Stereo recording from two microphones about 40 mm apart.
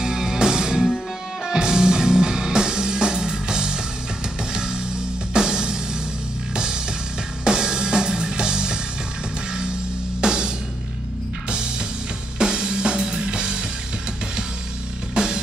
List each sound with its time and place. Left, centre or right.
0.0 s music: centre
5.3 s music: centre
10.2 s music: centre
12.4 s music: centre
15.1 s music: centre